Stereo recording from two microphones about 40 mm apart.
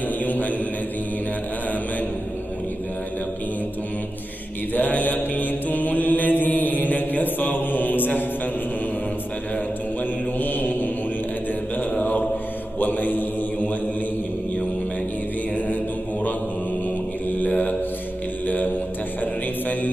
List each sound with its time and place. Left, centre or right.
0.2 s mantra: left
4.7 s mantra: left
10.4 s mantra: left
11.9 s mantra: left
17.4 s mantra: left